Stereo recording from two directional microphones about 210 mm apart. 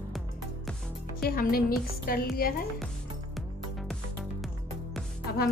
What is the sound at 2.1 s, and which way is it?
Speech, 45° left (ahead or behind).